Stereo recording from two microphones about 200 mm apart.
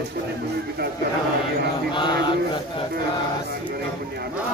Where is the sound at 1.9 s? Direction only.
25° left (ahead or behind).